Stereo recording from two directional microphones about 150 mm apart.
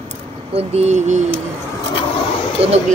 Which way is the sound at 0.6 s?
45° right (ahead or behind).